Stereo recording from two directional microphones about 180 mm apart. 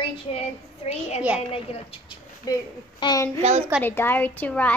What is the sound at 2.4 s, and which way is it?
A woman's voice, 20° left (ahead or behind).